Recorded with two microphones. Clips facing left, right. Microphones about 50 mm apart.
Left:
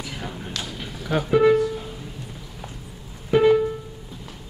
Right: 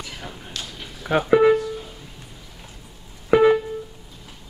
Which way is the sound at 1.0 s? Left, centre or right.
Right.